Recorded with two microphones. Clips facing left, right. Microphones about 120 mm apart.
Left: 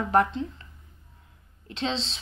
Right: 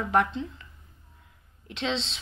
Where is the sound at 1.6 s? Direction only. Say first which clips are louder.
Even; 35° left (ahead or behind).